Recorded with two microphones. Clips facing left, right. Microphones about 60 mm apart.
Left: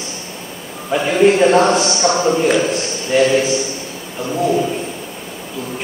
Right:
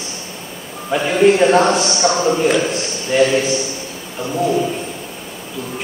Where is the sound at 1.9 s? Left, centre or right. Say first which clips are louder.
Left 1 dB; left.